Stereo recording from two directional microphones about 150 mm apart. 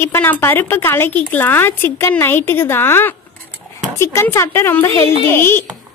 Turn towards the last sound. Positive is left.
turn(degrees=15)  # may be behind; listen again after turning